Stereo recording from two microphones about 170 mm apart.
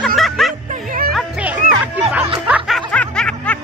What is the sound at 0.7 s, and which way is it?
Music, 55° right (ahead or behind).